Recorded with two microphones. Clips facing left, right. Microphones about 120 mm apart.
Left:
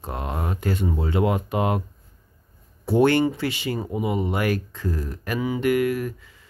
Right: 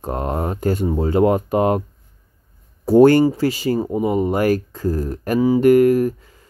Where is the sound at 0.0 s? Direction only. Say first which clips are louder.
Right 7 dB; 40° right (ahead or behind).